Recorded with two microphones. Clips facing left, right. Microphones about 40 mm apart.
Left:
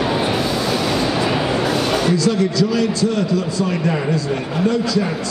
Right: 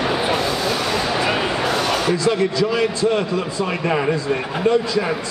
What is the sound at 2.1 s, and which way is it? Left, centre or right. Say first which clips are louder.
A man's voice: left 1 dB; right.